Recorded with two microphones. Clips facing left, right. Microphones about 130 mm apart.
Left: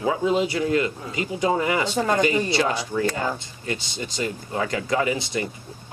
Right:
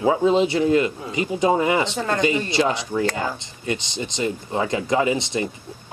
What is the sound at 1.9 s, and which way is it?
Speech, 15° left (ahead or behind).